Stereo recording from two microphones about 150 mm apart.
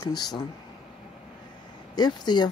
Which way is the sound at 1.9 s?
30° left (ahead or behind).